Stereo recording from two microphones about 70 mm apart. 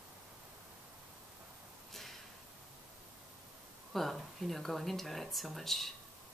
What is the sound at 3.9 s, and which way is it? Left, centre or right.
Speech, centre.